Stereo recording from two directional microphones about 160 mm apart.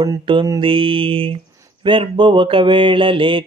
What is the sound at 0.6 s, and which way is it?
Speech, 35° right (ahead or behind).